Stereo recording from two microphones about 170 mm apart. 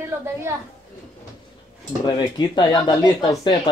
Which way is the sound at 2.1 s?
25° left (ahead or behind).